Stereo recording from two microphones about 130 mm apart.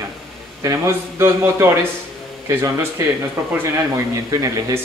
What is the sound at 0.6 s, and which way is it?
A man's voice, 20° right (ahead or behind).